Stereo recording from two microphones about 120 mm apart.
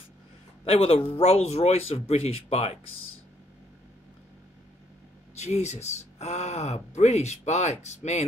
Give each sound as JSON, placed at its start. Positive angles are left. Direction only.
{"t": 0.7, "sound": "speech", "side_deg": 60}
{"t": 5.4, "sound": "speech", "side_deg": 70}